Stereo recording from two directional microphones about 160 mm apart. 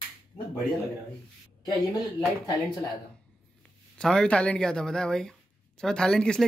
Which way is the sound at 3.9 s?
5° left (ahead or behind).